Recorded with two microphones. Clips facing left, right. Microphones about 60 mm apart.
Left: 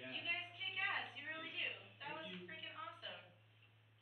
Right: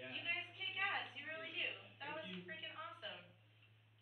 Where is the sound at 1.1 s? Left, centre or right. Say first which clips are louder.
Even; right.